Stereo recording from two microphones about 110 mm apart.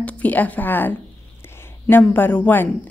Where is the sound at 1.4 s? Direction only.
20° left (ahead or behind).